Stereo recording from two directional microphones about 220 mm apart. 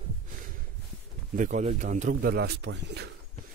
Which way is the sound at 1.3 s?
35° right (ahead or behind).